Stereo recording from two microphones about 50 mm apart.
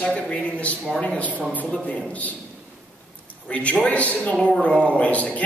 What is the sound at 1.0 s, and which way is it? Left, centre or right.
A man's voice, left.